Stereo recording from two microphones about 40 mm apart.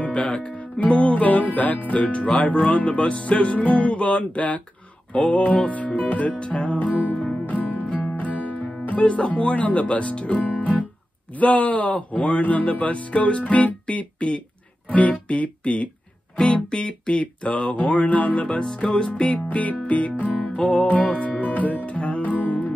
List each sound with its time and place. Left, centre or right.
0.0 s music: left
2.3 s speech: left
7.4 s music: left
9.0 s speech: left
16.3 s speech: left
18.7 s music: centre; by 19.4 s left
19.5 s speech: left
20.3 s music: left
21.1 s music: left